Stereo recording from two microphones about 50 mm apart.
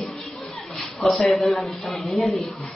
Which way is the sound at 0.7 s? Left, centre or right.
Centre.